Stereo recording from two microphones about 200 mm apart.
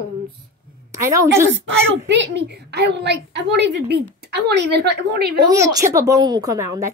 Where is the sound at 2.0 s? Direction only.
60° right (ahead or behind).